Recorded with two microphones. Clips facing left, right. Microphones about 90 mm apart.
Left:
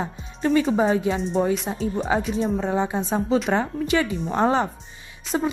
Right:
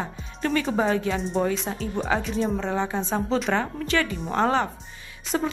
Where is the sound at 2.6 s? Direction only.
15° left (ahead or behind).